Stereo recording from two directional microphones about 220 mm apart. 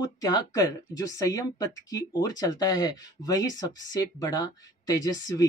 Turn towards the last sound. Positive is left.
turn(degrees=15)  # may be behind; listen again after turning